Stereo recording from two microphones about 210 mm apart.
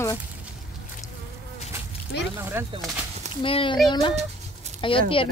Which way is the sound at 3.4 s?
25° left (ahead or behind).